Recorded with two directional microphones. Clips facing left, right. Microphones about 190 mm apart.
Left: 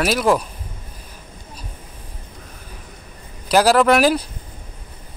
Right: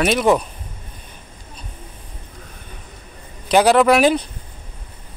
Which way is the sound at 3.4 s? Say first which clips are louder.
Right 1 dB; centre (ahead or behind).